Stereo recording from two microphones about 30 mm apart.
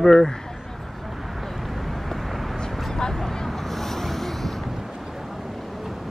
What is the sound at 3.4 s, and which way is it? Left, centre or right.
Vehicle, centre.